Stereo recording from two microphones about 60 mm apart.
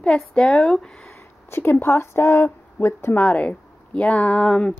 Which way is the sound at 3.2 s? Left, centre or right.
Left.